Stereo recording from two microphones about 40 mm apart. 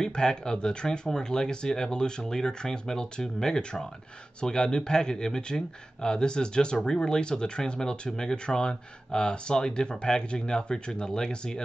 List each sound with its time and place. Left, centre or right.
0.0 s speech: centre